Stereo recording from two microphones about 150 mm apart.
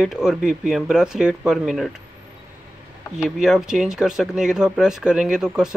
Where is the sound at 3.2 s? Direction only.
5° right (ahead or behind).